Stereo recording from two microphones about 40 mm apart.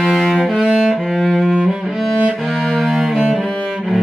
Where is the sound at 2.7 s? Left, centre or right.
Centre.